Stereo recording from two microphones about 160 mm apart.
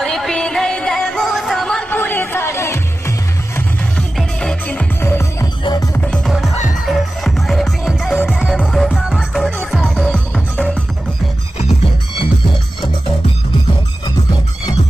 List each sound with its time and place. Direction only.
0.0 s music: centre (ahead or behind)
4.2 s music: 5° left (ahead or behind)
5.6 s music: 25° left (ahead or behind)
5.9 s music: 5° left (ahead or behind)